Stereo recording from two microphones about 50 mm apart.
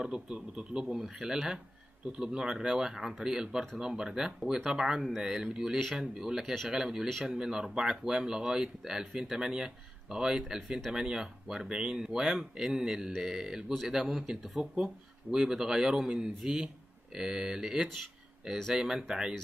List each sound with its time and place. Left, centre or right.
0.0 s speech: centre